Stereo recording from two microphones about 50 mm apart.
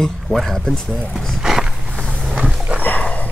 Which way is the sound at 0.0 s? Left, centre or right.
Centre.